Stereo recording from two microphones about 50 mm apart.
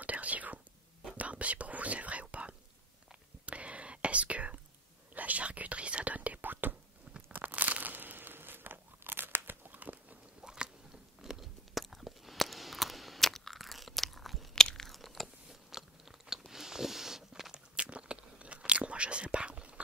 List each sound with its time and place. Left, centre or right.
0.0 s whispering: right
6.7 s a sound: right
10.4 s biting: centre
11.8 s chewing: centre
14.5 s chewing: centre
15.7 s biting: centre; by 19.7 s right